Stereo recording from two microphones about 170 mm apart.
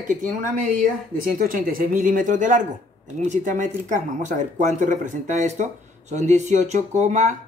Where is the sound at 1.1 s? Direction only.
55° right (ahead or behind).